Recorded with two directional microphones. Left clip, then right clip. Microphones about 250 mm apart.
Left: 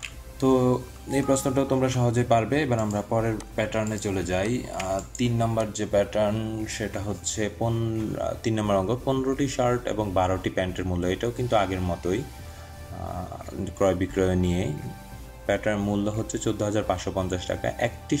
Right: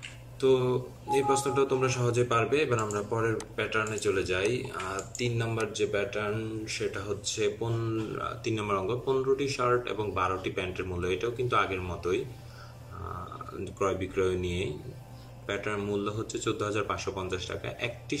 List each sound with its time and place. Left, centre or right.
0.4 s speech: left
13.7 s speech: left